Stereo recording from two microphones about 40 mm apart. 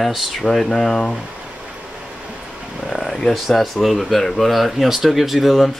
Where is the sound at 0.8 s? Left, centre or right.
Centre.